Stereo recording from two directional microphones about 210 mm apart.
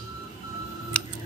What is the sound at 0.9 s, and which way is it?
Camera, 5° left (ahead or behind).